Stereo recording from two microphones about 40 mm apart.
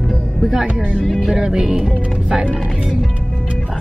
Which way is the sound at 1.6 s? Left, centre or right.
Centre.